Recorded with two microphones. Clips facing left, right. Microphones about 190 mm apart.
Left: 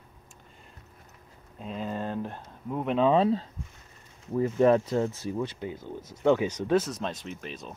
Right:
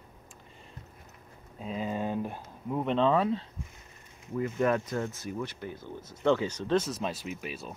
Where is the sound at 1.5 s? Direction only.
5° right (ahead or behind).